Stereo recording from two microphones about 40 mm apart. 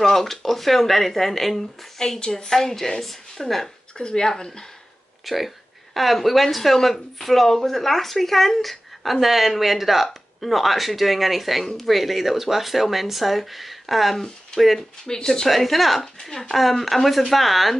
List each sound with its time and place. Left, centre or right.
0.0 s speech: centre
2.0 s a woman's voice: centre
4.0 s a woman's voice: left
5.2 s speech: centre
15.0 s a woman's voice: centre
15.4 s speech: centre
16.2 s a woman's voice: centre